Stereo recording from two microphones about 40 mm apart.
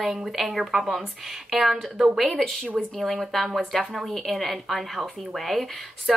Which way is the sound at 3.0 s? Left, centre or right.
Centre.